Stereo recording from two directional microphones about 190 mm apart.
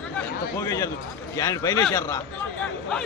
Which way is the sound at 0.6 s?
15° left (ahead or behind).